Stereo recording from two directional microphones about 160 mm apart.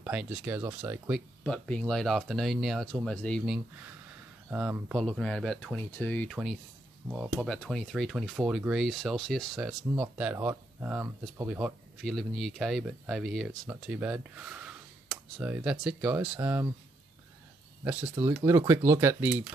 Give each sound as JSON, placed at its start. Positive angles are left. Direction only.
{"t": 0.0, "sound": "speech", "side_deg": -5}
{"t": 1.4, "sound": "speech", "side_deg": 5}
{"t": 3.4, "sound": "speech", "side_deg": -5}
{"t": 6.3, "sound": "speech", "side_deg": 0}
{"t": 10.3, "sound": "speech", "side_deg": -15}
{"t": 12.0, "sound": "speech", "side_deg": 0}
{"t": 17.8, "sound": "speech", "side_deg": -10}